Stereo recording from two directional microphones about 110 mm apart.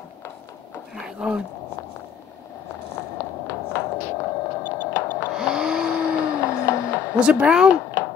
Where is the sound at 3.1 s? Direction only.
25° left (ahead or behind).